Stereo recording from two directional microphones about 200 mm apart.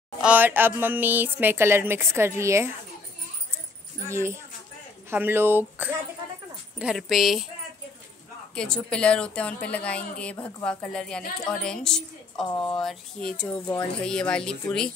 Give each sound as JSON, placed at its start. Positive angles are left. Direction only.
{"t": 0.2, "sound": "speech", "side_deg": -10}
{"t": 4.1, "sound": "a woman's voice", "side_deg": -15}
{"t": 8.5, "sound": "a woman's voice", "side_deg": 5}
{"t": 12.4, "sound": "speech", "side_deg": 25}
{"t": 12.8, "sound": "a woman's voice", "side_deg": 5}